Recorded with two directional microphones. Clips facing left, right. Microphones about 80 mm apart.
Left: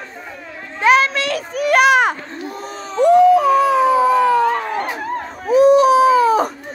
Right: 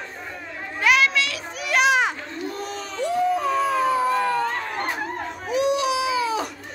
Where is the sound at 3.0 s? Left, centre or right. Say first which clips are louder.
Left 12 dB; left.